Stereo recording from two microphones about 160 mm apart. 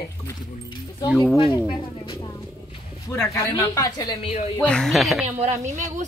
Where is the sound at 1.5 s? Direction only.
35° left (ahead or behind).